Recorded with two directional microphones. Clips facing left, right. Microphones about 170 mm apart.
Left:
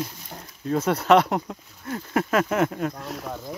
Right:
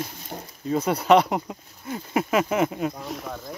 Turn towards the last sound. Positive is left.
turn(degrees=-5)  # may be behind; listen again after turning